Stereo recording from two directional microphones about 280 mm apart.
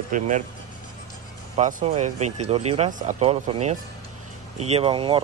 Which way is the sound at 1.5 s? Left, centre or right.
Right.